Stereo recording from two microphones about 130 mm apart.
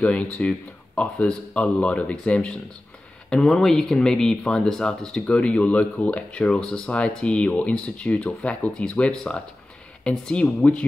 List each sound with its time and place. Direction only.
0.0 s speech: 10° left (ahead or behind)